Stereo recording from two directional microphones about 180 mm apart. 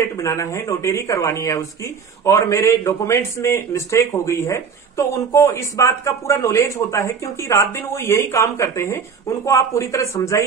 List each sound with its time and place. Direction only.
0.0 s a man's voice: 15° left (ahead or behind)